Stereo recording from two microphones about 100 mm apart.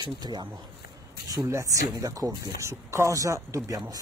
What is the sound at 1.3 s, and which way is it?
Speech, 30° right (ahead or behind).